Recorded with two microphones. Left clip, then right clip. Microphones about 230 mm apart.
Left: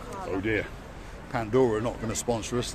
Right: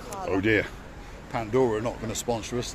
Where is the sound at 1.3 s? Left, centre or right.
Centre.